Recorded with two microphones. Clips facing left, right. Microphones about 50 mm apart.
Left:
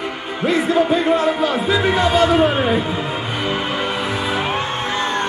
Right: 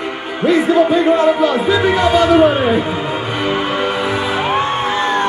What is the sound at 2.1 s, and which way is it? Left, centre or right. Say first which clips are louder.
A man's voice: right 5 dB; right.